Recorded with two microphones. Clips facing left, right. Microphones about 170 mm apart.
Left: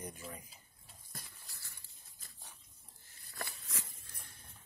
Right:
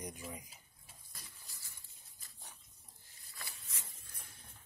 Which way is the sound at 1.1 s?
60° left (ahead or behind).